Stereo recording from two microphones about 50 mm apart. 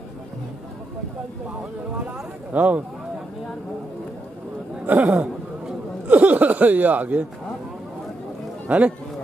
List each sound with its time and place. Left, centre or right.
2.5 s speech: right
4.8 s speech: right
8.6 s speech: right